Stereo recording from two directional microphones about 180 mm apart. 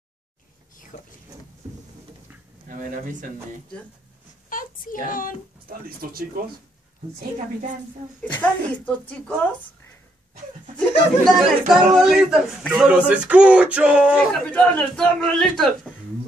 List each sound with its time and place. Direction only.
0.9 s vehicle: 45° left (ahead or behind)
2.7 s speech: 50° right (ahead or behind)
4.5 s a sound: 50° left (ahead or behind)
5.7 s speech: 55° right (ahead or behind)
8.2 s a man's voice: 10° left (ahead or behind)
10.8 s speech: centre (ahead or behind)
14.1 s a man's voice: 10° left (ahead or behind)